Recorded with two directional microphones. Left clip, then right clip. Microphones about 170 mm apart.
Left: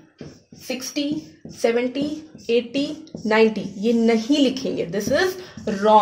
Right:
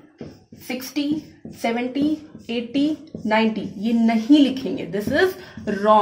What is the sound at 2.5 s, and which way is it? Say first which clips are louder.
A woman's voice: left 2 dB; 45° left (ahead or behind).